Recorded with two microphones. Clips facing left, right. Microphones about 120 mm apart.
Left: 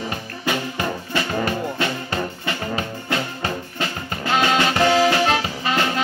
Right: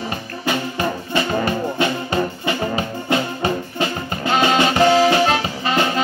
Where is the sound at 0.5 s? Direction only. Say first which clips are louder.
Right 2 dB; 5° right (ahead or behind).